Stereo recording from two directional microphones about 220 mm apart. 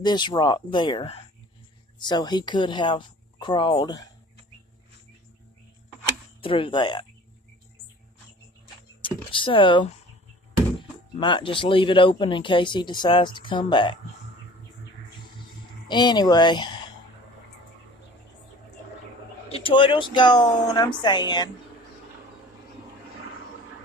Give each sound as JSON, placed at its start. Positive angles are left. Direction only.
{"t": 0.0, "sound": "speech", "side_deg": 20}
{"t": 6.4, "sound": "speech", "side_deg": 25}
{"t": 9.0, "sound": "speech", "side_deg": 25}
{"t": 11.1, "sound": "speech", "side_deg": 20}
{"t": 15.9, "sound": "speech", "side_deg": 20}
{"t": 19.5, "sound": "speech", "side_deg": 25}